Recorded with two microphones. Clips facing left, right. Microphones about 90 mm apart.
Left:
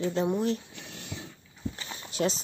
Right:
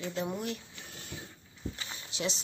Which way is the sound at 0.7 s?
75° left (ahead or behind).